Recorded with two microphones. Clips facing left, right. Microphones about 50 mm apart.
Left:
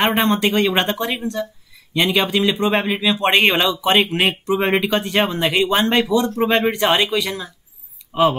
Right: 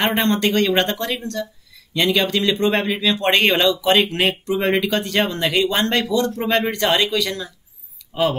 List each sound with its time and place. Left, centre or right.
0.0 s a man's voice: centre